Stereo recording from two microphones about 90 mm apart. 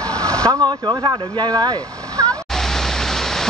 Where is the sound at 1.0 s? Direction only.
55° right (ahead or behind).